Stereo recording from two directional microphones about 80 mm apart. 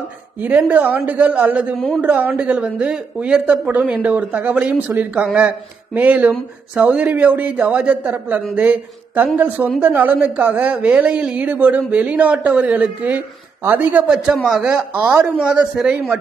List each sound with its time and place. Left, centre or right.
0.4 s a woman's voice: centre
14.1 s speech: centre
15.0 s speech: right